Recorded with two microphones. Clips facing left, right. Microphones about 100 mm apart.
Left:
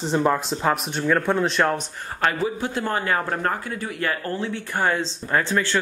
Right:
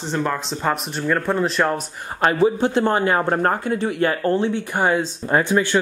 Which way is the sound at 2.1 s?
20° right (ahead or behind).